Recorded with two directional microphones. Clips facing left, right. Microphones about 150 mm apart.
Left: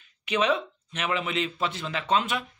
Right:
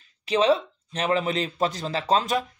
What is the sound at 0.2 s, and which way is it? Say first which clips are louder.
Speech: right 4 dB; 35° right (ahead or behind).